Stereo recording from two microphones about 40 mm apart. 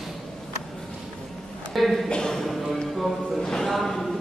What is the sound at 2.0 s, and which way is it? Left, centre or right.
Speech, left.